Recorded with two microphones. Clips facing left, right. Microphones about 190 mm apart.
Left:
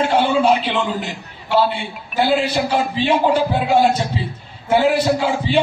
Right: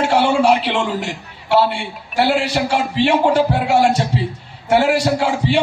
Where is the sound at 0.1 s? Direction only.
80° right.